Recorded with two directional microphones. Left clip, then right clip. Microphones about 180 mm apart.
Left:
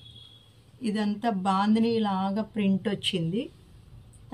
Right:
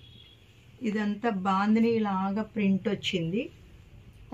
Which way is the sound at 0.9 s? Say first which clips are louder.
Left 1 dB; 40° left (ahead or behind).